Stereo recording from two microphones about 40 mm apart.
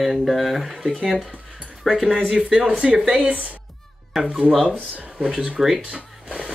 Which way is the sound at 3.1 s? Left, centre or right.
Right.